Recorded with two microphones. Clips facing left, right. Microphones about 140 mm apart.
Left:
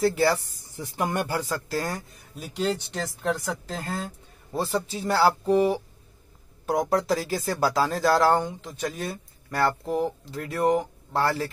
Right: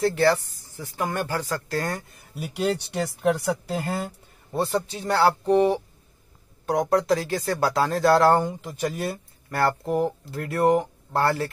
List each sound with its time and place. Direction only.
0.0 s speech: 5° left (ahead or behind)
0.7 s speech: 15° left (ahead or behind)
1.5 s speech: 5° left (ahead or behind)
2.3 s speech: 10° right (ahead or behind)
4.6 s speech: centre (ahead or behind)